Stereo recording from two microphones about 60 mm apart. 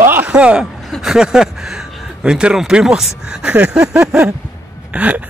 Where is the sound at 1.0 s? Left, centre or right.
Centre.